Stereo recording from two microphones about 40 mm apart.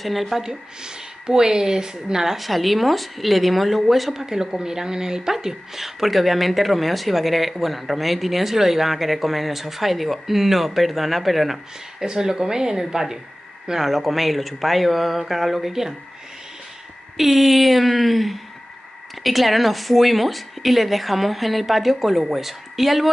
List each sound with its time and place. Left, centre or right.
0.0 s speech: centre
0.4 s a woman's voice: centre
2.3 s speech: centre
4.3 s speech: centre
12.1 s a woman's voice: centre
17.2 s speech: centre